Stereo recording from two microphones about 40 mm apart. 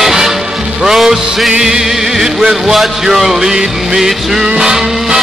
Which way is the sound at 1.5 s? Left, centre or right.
Centre.